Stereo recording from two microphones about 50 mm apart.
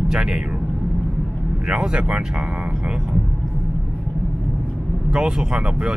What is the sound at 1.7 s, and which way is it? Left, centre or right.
Speech, centre.